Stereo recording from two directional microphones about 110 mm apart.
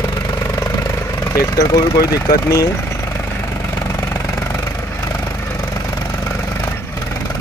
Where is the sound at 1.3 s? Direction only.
30° left (ahead or behind).